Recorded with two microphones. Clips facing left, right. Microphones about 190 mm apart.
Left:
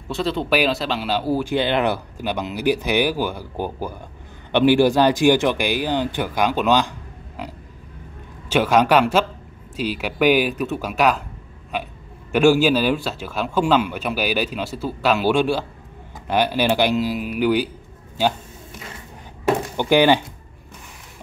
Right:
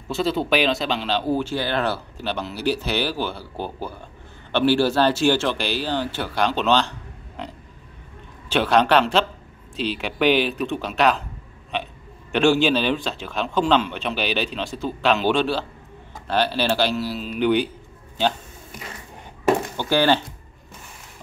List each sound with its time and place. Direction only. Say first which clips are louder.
0.1 s a man's voice: even; centre (ahead or behind)
1.5 s a man's voice: left 4 dB; 20° left (ahead or behind)
12.3 s a man's voice: left 3 dB; 10° left (ahead or behind)
19.8 s a man's voice: left 4 dB; 15° left (ahead or behind)